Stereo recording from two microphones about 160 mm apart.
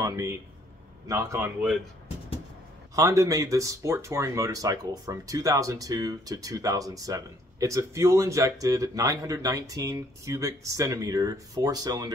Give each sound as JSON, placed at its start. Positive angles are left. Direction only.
{"t": 0.0, "sound": "speech", "side_deg": -20}
{"t": 3.0, "sound": "speech", "side_deg": -20}